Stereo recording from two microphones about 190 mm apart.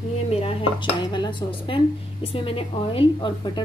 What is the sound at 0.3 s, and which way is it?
A woman's voice, 30° left (ahead or behind).